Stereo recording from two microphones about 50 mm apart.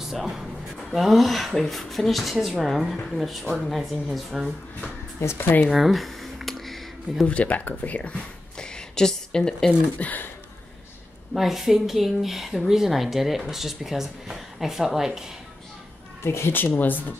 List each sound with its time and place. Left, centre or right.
0.0 s speech: centre
5.2 s speech: left
5.7 s a sound: centre
7.2 s speech: left
9.7 s speech: left
11.3 s speech: centre
16.3 s speech: left
16.6 s speech: left